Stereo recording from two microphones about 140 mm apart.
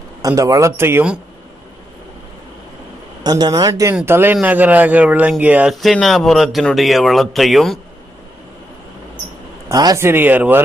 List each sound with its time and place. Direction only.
0.2 s speech: 25° right (ahead or behind)
3.3 s speech: 30° right (ahead or behind)
3.9 s speech: 15° right (ahead or behind)
5.8 s speech: centre (ahead or behind)
9.7 s speech: 25° right (ahead or behind)